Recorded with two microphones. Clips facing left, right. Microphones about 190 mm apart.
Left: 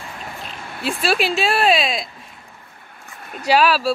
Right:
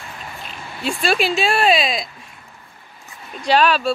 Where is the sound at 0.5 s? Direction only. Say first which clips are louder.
Right 1 dB; centre (ahead or behind).